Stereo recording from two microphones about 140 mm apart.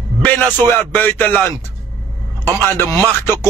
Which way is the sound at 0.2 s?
10° left (ahead or behind).